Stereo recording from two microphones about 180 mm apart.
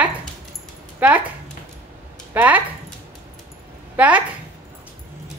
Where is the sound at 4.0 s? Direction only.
10° right (ahead or behind).